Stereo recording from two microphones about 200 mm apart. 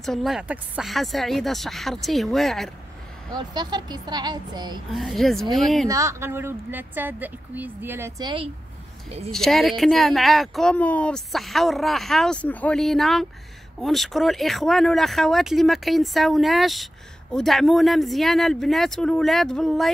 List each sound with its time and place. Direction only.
0.0 s speech: centre (ahead or behind)
3.3 s speech: 20° right (ahead or behind)
4.9 s speech: centre (ahead or behind)
5.9 s speech: 15° right (ahead or behind)
8.2 s speech: 25° right (ahead or behind)
9.3 s speech: centre (ahead or behind)